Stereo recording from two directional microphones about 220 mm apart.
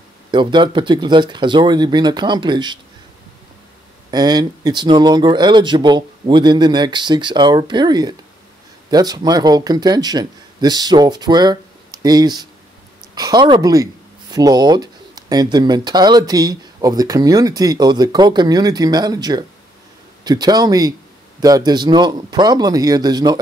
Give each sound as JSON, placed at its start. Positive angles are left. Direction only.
{"t": 0.3, "sound": "speech", "side_deg": -20}
{"t": 4.1, "sound": "speech", "side_deg": -20}